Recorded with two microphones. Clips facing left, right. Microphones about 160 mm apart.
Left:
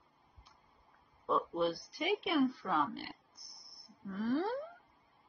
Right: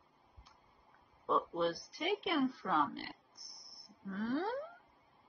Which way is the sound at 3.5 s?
Centre (ahead or behind).